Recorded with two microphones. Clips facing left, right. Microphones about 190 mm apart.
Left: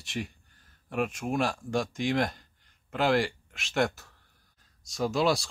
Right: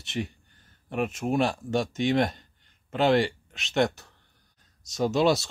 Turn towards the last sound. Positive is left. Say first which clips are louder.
# right 3 dB
turn(degrees=-20)  # may be behind; listen again after turning